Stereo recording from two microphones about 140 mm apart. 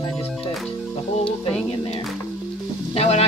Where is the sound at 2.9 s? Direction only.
45° left (ahead or behind).